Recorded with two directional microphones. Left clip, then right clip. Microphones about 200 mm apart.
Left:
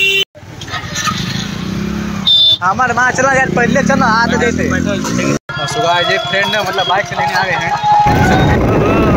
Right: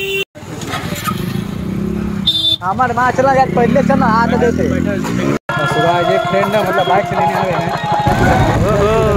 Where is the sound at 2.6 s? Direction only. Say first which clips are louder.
Left 2 dB; centre (ahead or behind).